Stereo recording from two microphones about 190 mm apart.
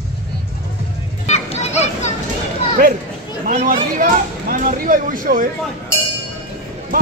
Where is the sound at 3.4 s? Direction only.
45° right (ahead or behind).